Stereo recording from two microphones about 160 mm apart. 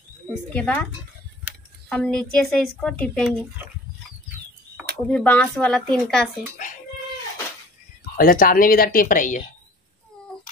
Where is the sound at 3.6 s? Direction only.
10° right (ahead or behind).